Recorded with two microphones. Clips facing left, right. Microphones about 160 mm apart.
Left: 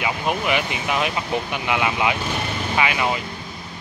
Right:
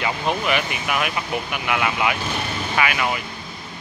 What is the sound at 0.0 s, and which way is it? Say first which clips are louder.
Speech: even; 15° left (ahead or behind).